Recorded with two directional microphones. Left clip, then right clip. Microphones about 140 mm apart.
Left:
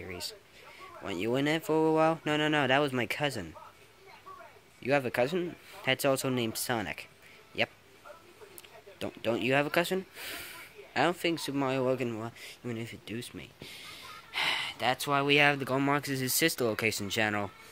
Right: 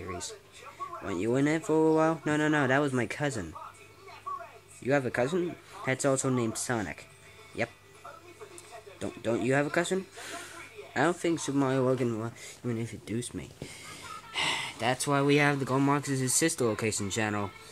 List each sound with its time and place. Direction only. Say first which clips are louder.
1.0 s speech: right 1 dB; 25° left (ahead or behind)
4.8 s speech: even; 30° left (ahead or behind)
6.8 s speech: even; 40° left (ahead or behind)
9.0 s speech: right 1 dB; 30° left (ahead or behind)
13.0 s a sound: right 4 dB; 10° left (ahead or behind)
14.4 s speech: even; 15° left (ahead or behind)